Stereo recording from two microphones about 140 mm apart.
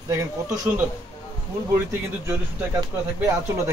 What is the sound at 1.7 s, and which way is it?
Speech, 15° right (ahead or behind).